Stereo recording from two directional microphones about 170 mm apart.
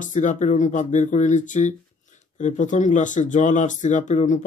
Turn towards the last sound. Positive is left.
turn(degrees=45)  # may be behind; listen again after turning